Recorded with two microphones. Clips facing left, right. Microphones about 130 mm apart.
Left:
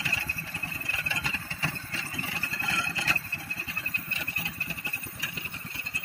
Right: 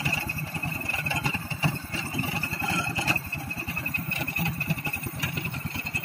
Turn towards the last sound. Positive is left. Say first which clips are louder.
# right 9 dB
turn(degrees=-55)  # may be behind; listen again after turning